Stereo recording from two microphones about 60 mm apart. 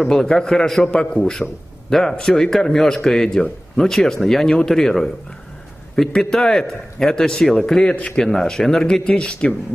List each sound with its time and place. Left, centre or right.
0.0 s speech: centre